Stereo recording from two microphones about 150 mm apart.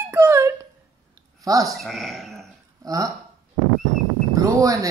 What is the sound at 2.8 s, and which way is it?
Speech, 25° right (ahead or behind).